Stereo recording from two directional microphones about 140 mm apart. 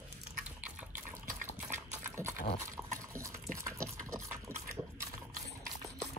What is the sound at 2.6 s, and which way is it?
Dog, 20° right (ahead or behind).